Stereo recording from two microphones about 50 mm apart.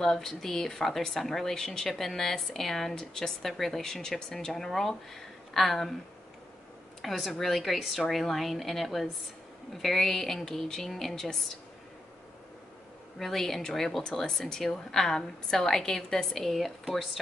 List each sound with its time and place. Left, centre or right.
0.0 s a woman's voice: centre
7.0 s a woman's voice: centre
13.2 s a woman's voice: centre